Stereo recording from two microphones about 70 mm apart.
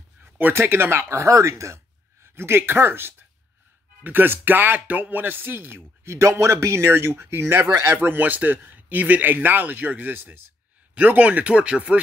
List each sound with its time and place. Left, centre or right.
0.2 s a man's voice: right; by 12.0 s centre